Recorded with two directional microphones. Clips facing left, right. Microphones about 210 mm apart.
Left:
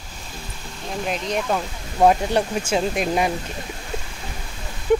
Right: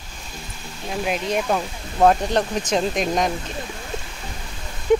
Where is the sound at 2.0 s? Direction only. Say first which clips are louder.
Even; 10° left (ahead or behind).